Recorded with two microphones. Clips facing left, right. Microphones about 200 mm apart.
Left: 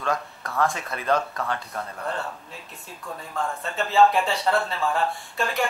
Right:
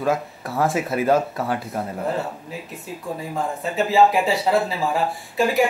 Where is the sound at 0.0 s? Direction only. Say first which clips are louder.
Right 5 dB; 5° right (ahead or behind).